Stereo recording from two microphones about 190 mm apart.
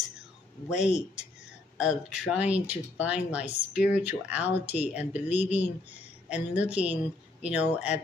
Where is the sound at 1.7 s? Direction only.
5° right (ahead or behind).